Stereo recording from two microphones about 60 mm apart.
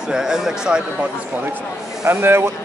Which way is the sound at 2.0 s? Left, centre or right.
Right.